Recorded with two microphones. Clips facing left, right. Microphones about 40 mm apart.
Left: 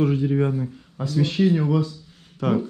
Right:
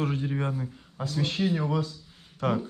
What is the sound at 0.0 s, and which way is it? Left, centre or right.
Speech, right.